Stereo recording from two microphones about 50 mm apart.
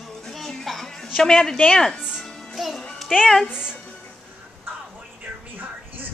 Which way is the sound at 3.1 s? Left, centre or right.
Centre.